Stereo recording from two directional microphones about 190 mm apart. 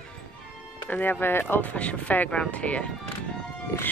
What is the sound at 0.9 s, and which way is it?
Speech, 10° left (ahead or behind).